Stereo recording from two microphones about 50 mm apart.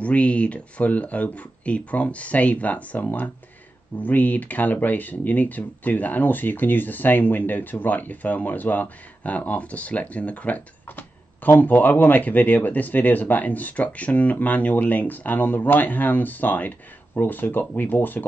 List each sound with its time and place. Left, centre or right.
0.0 s speech: left
10.9 s speech: left